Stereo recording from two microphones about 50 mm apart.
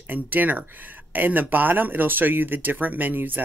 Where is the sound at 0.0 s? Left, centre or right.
Right.